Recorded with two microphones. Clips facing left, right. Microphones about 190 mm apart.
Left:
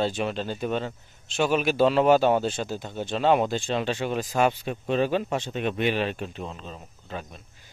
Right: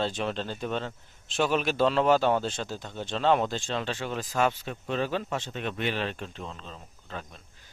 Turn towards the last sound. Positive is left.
turn(degrees=15)  # may be behind; listen again after turning